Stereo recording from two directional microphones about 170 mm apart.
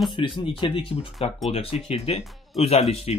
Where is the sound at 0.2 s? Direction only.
30° left (ahead or behind).